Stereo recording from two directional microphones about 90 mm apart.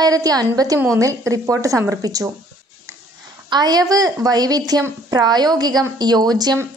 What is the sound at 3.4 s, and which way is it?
A woman's voice, 50° right (ahead or behind).